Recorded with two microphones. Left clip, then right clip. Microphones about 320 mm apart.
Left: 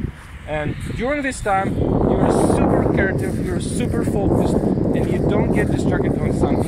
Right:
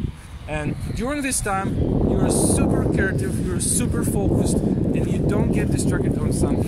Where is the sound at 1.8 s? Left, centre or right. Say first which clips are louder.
Left 4 dB; left.